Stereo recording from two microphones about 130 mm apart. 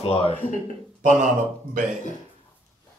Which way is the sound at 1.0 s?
75° right (ahead or behind).